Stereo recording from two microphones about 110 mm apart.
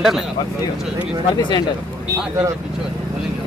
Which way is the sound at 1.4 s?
45° left (ahead or behind).